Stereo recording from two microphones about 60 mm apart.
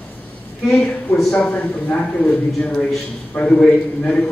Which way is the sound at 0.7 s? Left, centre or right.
Centre.